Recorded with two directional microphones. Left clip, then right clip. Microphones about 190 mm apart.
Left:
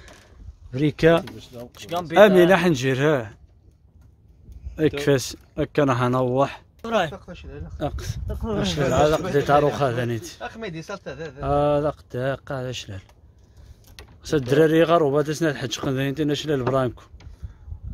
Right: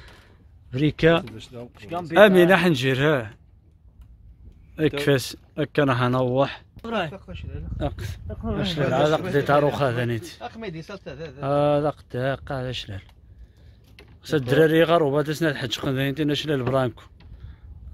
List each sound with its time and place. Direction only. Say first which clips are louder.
0.7 s speech: left 1 dB; 5° left (ahead or behind)
1.8 s speech: left 3 dB; 35° left (ahead or behind)
2.1 s a man's voice: left 1 dB; 5° left (ahead or behind)
4.7 s speech: left 1 dB; 5° left (ahead or behind)
6.8 s speech: left 5 dB; 65° left (ahead or behind)
7.1 s speech: left 2 dB; 25° left (ahead or behind)
7.8 s a man's voice: left 1 dB; 10° left (ahead or behind)
10.4 s speech: left 2 dB; 15° left (ahead or behind)
11.3 s speech: even; 5° right (ahead or behind)
14.2 s speech: left 1 dB; 10° left (ahead or behind)